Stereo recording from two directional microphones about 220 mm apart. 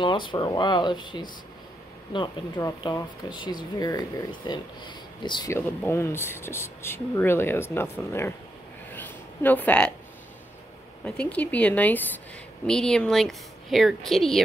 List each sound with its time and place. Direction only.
0.0 s speech: 20° left (ahead or behind)
8.9 s a sound: 10° left (ahead or behind)
11.1 s a woman's voice: 5° left (ahead or behind)